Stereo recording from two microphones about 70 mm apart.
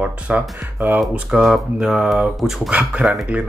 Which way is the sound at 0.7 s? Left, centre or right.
Right.